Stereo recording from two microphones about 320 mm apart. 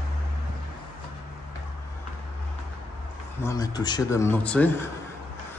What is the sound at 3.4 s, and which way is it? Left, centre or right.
Speech, centre.